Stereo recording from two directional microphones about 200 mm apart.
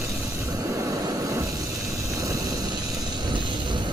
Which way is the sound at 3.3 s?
20° right (ahead or behind).